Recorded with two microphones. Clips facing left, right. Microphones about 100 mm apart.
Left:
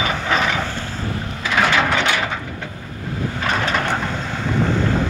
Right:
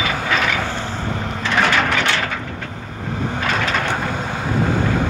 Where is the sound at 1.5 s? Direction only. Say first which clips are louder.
Left 1 dB; 15° left (ahead or behind).